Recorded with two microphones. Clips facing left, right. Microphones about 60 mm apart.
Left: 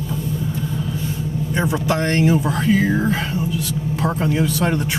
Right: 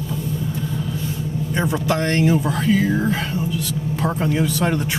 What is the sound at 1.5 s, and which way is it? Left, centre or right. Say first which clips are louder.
Speech: left 1 dB; centre.